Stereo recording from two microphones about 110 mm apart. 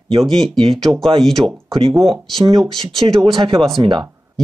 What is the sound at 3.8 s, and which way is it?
Speech, 45° right (ahead or behind).